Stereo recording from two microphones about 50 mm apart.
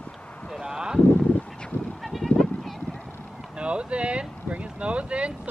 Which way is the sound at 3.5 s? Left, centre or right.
Right.